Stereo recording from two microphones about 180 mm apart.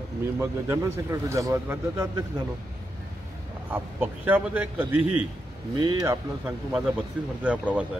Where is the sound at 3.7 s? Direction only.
10° right (ahead or behind).